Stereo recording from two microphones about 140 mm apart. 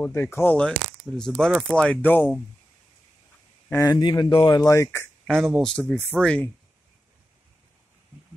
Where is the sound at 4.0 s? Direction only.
30° left (ahead or behind).